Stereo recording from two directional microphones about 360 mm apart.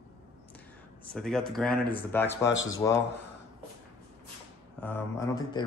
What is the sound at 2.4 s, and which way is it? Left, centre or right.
Speech, left.